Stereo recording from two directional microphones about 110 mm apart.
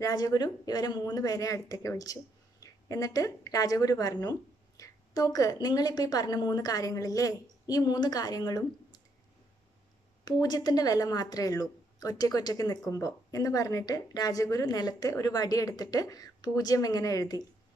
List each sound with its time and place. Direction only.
0.0 s speech: 35° left (ahead or behind)
10.2 s speech: 40° left (ahead or behind)